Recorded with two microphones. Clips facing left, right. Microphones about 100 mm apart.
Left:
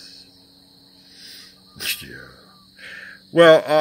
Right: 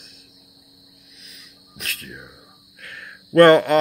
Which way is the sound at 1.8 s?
20° left (ahead or behind).